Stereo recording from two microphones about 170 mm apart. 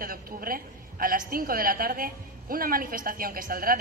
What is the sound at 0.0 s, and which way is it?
A woman's voice, 55° right (ahead or behind).